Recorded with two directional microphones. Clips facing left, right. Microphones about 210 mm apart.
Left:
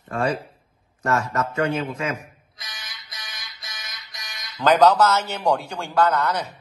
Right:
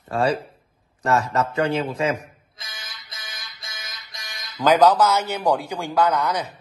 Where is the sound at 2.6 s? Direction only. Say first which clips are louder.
Even; 25° right (ahead or behind).